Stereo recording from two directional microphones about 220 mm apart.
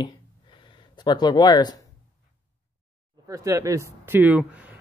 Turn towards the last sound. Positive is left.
turn(degrees=-5)  # may be behind; listen again after turning